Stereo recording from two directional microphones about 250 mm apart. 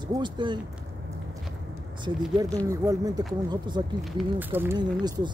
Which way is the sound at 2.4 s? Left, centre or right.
Centre.